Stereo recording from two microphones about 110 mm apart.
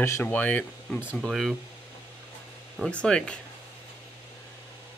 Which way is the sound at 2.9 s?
10° left (ahead or behind).